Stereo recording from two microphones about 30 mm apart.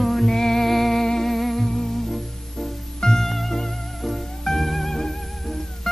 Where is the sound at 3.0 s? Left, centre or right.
Centre.